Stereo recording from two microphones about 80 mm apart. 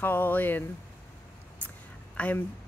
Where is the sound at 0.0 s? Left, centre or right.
Left.